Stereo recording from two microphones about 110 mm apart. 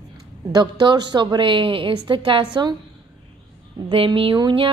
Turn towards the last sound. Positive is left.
turn(degrees=-50)  # may be behind; listen again after turning